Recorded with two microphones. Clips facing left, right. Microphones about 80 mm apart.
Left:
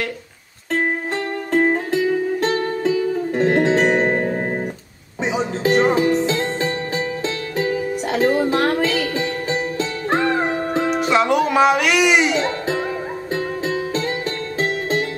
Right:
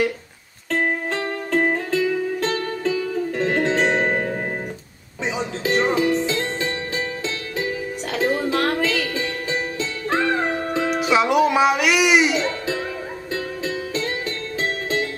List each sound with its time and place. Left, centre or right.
1.5 s music: left
7.5 s music: left
11.0 s music: centre
12.4 s music: left